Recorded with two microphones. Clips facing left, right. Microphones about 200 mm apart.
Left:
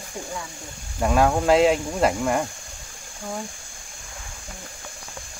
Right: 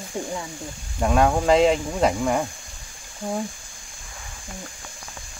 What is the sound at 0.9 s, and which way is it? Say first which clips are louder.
Speech: even; centre (ahead or behind).